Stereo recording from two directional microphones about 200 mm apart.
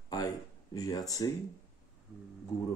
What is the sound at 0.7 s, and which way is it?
Speech, 15° left (ahead or behind).